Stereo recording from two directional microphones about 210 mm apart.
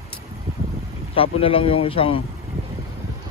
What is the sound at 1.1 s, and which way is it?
A man's voice, 25° left (ahead or behind).